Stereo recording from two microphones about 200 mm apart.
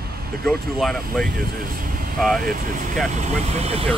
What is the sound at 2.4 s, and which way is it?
Speech, 40° right (ahead or behind).